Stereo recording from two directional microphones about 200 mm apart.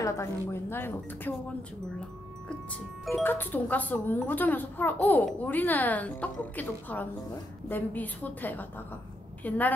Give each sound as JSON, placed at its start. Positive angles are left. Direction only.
{"t": 0.0, "sound": "speech", "side_deg": 10}
{"t": 3.2, "sound": "speech", "side_deg": 10}